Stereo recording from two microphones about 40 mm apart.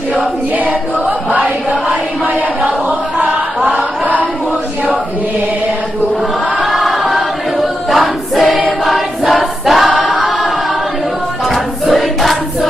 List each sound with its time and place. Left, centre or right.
3.6 s chant: right
6.6 s choir: centre
8.8 s choir: centre
11.8 s choir: centre